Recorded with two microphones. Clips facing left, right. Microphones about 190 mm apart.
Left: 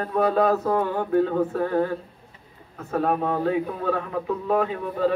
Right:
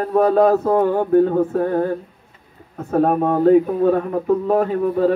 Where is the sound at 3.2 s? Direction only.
45° right (ahead or behind).